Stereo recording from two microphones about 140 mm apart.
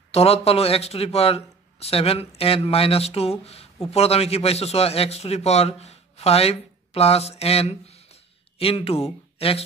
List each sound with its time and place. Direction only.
0.1 s a man's voice: 45° left (ahead or behind)